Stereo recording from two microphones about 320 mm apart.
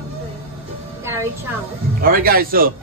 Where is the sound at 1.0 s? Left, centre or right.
Centre.